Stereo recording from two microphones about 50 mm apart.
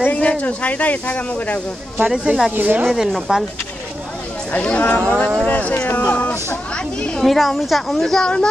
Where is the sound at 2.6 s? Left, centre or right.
Right.